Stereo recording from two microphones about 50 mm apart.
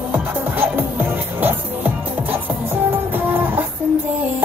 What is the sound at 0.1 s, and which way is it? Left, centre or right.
Music, right.